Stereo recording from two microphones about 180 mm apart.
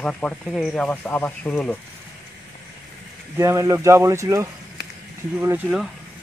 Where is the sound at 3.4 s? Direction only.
15° right (ahead or behind).